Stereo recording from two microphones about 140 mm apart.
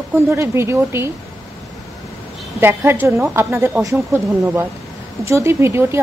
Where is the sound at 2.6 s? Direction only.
15° right (ahead or behind).